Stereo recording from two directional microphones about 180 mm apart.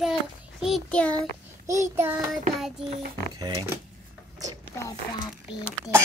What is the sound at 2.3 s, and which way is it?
Speech, centre (ahead or behind).